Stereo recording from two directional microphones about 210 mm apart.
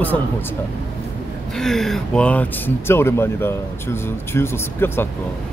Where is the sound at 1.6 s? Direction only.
Centre (ahead or behind).